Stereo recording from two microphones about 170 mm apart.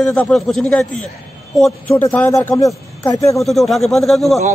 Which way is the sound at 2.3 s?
20° left (ahead or behind).